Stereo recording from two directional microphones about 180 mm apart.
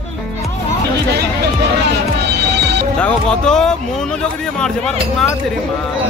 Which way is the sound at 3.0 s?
5° left (ahead or behind).